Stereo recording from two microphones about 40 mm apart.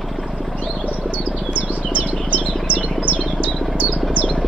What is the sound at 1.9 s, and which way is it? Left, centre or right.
Chirp, right.